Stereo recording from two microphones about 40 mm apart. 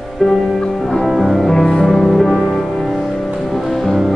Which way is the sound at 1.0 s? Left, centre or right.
Centre.